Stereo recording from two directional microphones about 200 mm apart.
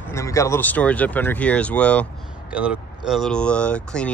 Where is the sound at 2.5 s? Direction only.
5° right (ahead or behind).